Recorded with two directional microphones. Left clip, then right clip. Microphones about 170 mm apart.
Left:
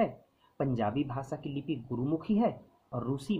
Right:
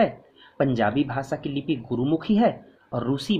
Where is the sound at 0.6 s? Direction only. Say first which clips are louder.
Right 9 dB; 20° left (ahead or behind).